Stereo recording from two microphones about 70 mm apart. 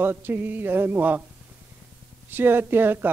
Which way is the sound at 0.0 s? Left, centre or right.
Right.